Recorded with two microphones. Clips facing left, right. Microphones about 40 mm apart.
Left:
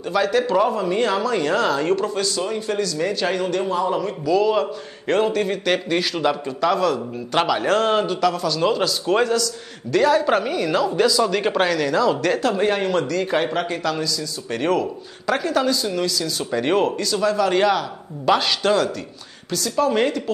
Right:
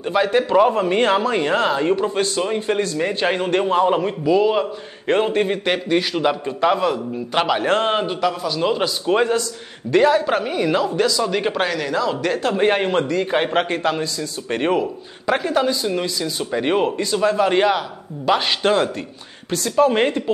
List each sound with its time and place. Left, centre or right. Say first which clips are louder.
0.0 s a man's voice: right 2 dB; right
0.7 s a man's voice: right 3 dB; right
2.1 s a man's voice: right 3 dB; right
5.7 s a man's voice: right 1 dB; centre
10.2 s speech: left 1 dB; centre
10.5 s a man's voice: right 1 dB; centre
10.9 s speech: left 1 dB; centre
12.4 s a man's voice: even; centre
12.6 s a man's voice: right 2 dB; right; by 17.0 s centre
17.0 s a man's voice: right 2 dB; right